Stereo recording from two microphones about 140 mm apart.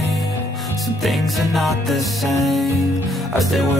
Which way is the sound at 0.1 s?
Centre (ahead or behind).